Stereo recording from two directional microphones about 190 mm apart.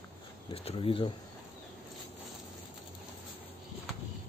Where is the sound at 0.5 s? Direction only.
30° left (ahead or behind).